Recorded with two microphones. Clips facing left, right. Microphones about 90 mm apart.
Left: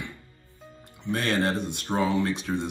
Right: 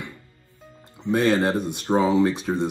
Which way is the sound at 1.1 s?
20° right (ahead or behind).